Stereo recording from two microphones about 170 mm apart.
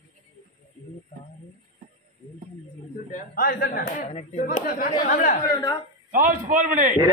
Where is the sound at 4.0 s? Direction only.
40° left (ahead or behind).